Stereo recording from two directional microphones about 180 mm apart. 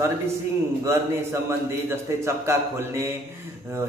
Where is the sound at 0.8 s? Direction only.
15° right (ahead or behind).